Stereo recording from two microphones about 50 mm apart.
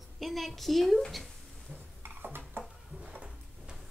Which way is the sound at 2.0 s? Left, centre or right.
Right.